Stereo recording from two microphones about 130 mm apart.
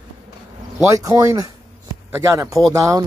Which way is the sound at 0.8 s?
25° right (ahead or behind).